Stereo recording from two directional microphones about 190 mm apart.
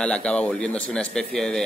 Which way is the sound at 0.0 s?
5° left (ahead or behind).